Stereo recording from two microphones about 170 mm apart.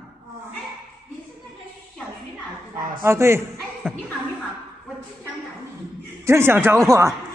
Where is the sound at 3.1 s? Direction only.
15° right (ahead or behind).